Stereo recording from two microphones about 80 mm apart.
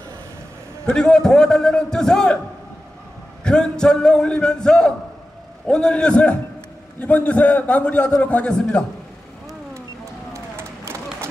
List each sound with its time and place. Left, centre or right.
0.8 s a man's voice: centre
3.4 s a man's voice: centre
10.3 s run: right